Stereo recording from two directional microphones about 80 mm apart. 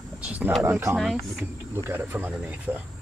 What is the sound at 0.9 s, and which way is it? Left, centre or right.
Speech, centre.